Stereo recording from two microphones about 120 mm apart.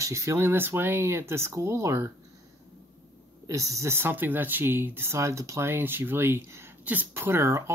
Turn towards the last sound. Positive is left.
turn(degrees=-25)  # may be behind; listen again after turning